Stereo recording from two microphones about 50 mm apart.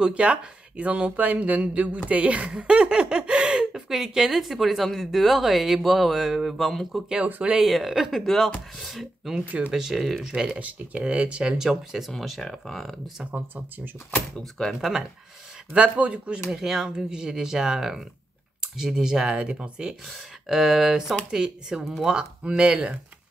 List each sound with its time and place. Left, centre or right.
0.0 s speech: right; by 7.1 s centre
7.2 s speech: right
7.6 s speech: centre
10.6 s speech: right; by 12.1 s centre
12.1 s speech: centre
13.3 s speech: right
14.6 s speech: centre
15.7 s speech: right
16.5 s speech: centre
20.1 s speech: centre